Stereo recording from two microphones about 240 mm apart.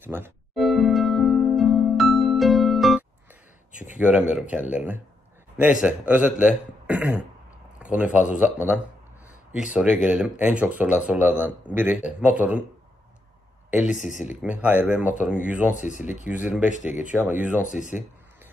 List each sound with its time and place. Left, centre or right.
0.0 s music: centre
4.0 s a man's voice: centre
13.7 s a man's voice: centre
15.7 s speech: left
16.0 s a man's voice: centre
16.6 s speech: left
17.0 s speech: centre
17.6 s speech: left